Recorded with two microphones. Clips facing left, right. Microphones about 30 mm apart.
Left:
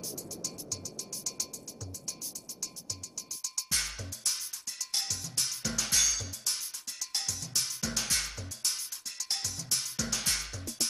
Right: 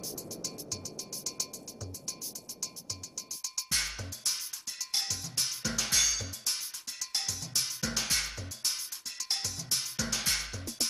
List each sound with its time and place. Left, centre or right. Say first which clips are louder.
0.0 s music: even; centre
3.4 s drum: right 1 dB; centre